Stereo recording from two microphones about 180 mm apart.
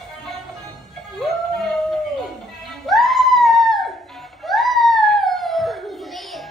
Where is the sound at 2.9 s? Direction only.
Centre (ahead or behind).